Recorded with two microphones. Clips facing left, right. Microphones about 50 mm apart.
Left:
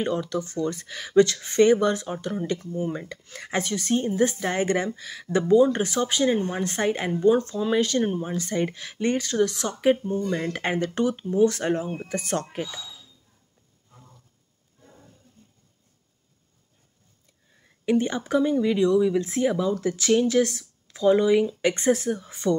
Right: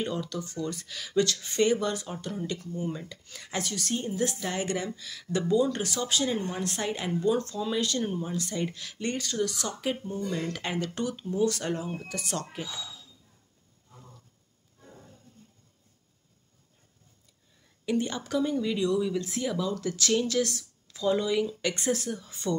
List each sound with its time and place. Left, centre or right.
0.1 s speech: left
0.7 s speech: left
2.9 s speech: left
17.8 s speech: left